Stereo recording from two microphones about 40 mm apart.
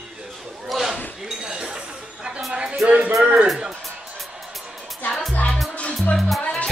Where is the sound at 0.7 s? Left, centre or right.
Centre.